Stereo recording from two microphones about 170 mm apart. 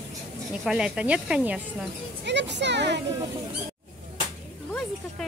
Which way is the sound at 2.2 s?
90° right.